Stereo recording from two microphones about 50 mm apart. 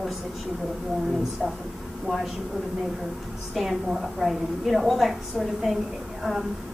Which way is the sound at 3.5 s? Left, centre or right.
Centre.